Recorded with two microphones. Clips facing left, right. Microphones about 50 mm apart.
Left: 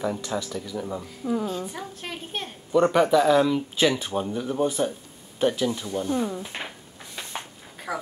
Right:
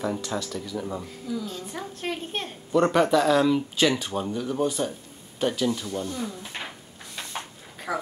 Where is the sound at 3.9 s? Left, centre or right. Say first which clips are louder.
Left 1 dB; left.